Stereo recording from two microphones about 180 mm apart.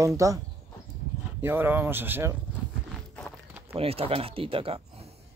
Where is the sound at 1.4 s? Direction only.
10° right (ahead or behind).